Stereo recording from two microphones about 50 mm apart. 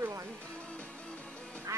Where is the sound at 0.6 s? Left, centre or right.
Left.